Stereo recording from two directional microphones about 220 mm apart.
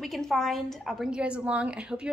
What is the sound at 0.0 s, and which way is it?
A woman's voice, centre (ahead or behind).